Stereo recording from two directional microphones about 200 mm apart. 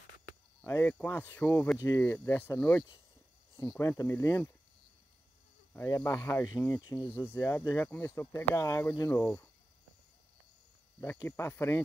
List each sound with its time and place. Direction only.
0.6 s speech: 10° left (ahead or behind)
5.7 s speech: 10° left (ahead or behind)
11.0 s speech: 15° left (ahead or behind)